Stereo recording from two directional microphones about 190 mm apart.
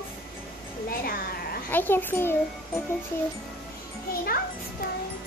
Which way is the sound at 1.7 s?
10° left (ahead or behind).